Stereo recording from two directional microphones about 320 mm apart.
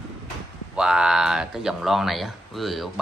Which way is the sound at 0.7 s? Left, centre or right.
Centre.